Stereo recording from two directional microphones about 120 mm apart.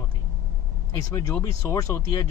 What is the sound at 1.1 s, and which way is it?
Speech, 25° left (ahead or behind).